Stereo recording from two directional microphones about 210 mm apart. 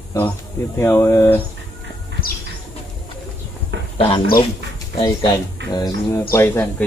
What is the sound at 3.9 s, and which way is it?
Speech, 25° left (ahead or behind).